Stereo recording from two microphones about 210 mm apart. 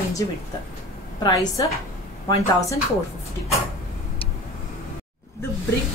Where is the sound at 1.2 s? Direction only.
15° left (ahead or behind).